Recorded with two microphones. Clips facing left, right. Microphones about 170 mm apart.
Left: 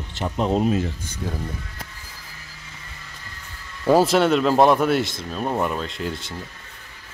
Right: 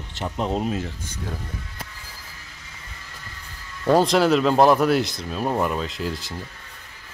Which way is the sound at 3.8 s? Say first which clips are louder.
Left 1 dB; 5° left (ahead or behind).